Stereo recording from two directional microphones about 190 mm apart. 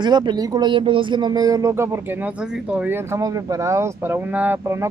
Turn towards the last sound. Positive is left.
turn(degrees=-10)  # may be behind; listen again after turning